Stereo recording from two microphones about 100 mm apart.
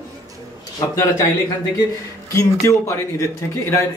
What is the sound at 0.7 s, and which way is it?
Speech, 35° left (ahead or behind).